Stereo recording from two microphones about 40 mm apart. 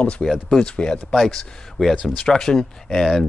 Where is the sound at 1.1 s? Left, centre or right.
Centre.